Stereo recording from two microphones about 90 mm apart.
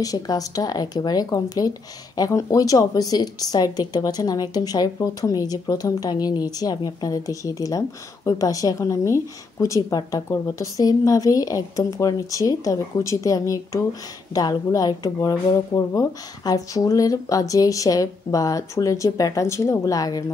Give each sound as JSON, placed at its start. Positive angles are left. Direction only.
{"t": 0.0, "sound": "speech", "side_deg": 40}
{"t": 15.7, "sound": "speech", "side_deg": 35}